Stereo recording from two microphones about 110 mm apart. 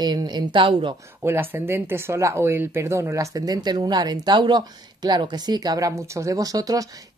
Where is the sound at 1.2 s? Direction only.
20° right (ahead or behind).